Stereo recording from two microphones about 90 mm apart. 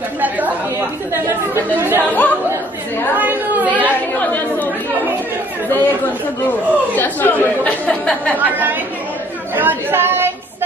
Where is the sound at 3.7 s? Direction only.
20° left (ahead or behind).